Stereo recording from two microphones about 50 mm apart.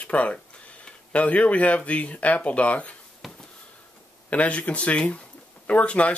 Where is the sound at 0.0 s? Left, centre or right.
Left.